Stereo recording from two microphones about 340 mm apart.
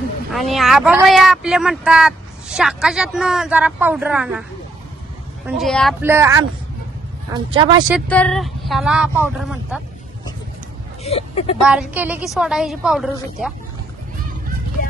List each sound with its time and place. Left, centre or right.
0.3 s speech: centre
5.6 s speech: centre
7.9 s speech: centre
11.1 s speech: centre
11.6 s speech: centre